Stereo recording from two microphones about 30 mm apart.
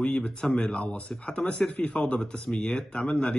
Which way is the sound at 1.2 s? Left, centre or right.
Left.